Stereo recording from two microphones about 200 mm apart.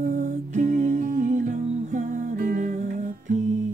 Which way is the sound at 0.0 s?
40° right (ahead or behind).